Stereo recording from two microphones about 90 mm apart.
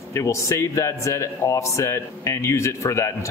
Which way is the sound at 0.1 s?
35° left (ahead or behind).